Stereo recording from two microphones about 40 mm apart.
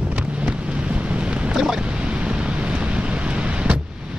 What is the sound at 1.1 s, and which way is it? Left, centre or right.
Boat, right.